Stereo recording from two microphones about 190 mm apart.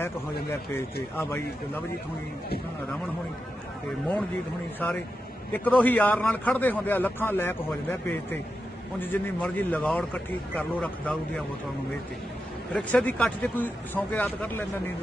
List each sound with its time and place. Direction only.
1.1 s a man's voice: 10° left (ahead or behind)
4.8 s a man's voice: 10° left (ahead or behind)
12.7 s a man's voice: 5° left (ahead or behind)